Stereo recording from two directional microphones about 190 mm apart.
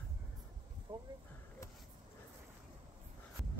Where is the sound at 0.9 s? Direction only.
20° right (ahead or behind).